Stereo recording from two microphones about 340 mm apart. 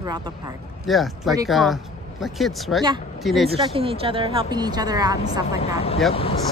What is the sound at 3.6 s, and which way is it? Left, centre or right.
A woman's voice, centre.